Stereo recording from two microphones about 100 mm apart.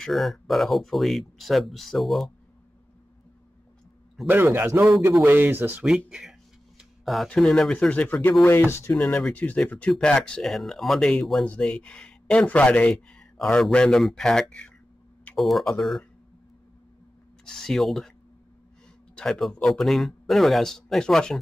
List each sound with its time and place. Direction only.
0.0 s speech: centre (ahead or behind)
4.3 s speech: 20° right (ahead or behind)
5.9 s speech: 10° right (ahead or behind)
7.9 s speech: 15° left (ahead or behind)
8.9 s speech: 10° left (ahead or behind)
17.5 s speech: 5° left (ahead or behind)
19.1 s speech: 5° left (ahead or behind)